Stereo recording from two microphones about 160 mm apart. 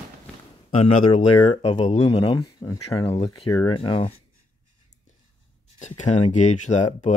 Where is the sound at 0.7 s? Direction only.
45° left (ahead or behind).